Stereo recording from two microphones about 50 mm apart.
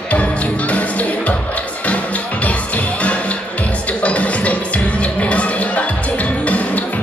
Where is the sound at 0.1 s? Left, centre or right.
Left.